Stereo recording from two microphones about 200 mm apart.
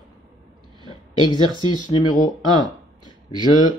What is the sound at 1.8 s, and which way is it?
Speech, 20° left (ahead or behind).